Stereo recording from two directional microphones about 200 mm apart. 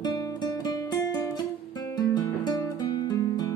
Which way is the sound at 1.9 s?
20° left (ahead or behind).